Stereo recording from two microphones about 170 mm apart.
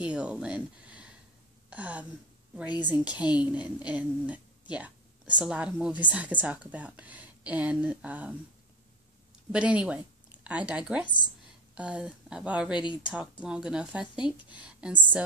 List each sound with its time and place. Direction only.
0.0 s a woman's voice: 5° right (ahead or behind)
9.5 s a woman's voice: 5° right (ahead or behind)
12.7 s speech: 30° left (ahead or behind)
13.1 s speech: 5° right (ahead or behind)